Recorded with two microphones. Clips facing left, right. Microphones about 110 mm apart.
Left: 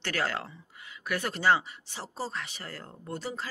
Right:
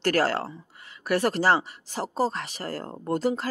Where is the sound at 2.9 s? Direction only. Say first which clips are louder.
Right 11 dB; 80° right.